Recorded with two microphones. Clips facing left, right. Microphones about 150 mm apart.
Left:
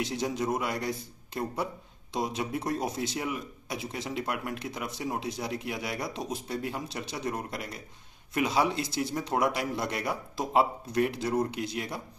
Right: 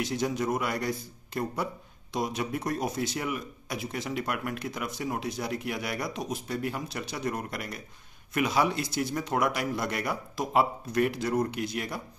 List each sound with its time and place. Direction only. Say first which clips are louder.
0.0 s speech: right 1 dB; 25° left (ahead or behind)